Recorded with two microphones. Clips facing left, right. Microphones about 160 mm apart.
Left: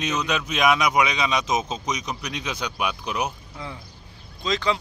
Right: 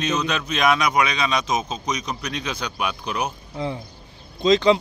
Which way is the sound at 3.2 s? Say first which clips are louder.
Right 5 dB; 25° right (ahead or behind).